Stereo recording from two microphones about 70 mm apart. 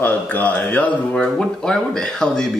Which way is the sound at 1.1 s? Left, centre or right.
Centre.